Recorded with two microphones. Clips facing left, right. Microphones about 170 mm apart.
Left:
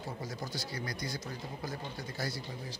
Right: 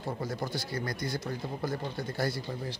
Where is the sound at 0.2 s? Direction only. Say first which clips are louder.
Right 6 dB; 55° right (ahead or behind).